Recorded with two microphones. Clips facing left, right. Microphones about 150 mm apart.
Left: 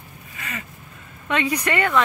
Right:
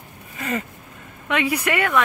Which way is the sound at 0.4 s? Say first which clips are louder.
Right 9 dB; 45° right (ahead or behind).